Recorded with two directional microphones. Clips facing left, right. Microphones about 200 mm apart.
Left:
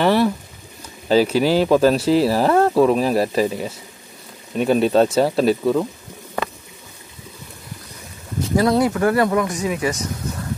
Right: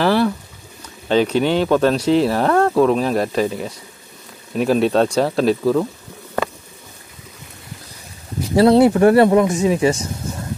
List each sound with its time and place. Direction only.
0.0 s speech: centre (ahead or behind)
8.5 s speech: 30° right (ahead or behind)